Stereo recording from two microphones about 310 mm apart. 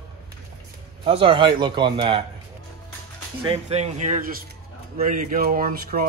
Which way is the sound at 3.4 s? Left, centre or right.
Centre.